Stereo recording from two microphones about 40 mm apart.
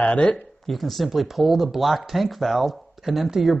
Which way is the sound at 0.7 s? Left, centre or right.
Centre.